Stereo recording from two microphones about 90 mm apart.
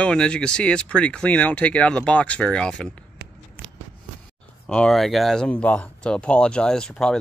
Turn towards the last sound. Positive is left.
turn(degrees=5)  # may be behind; listen again after turning